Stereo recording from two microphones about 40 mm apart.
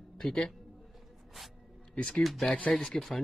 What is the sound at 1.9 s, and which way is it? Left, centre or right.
Speech, centre.